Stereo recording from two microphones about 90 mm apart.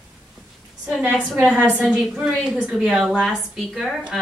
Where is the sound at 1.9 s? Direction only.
5° right (ahead or behind).